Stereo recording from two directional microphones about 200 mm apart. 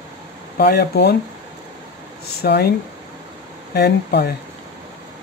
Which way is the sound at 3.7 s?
55° left (ahead or behind).